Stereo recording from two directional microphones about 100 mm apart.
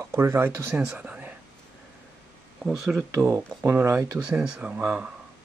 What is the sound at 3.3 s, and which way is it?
Speech, 25° right (ahead or behind).